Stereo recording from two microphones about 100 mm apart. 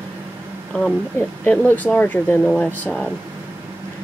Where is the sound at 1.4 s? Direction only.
15° left (ahead or behind).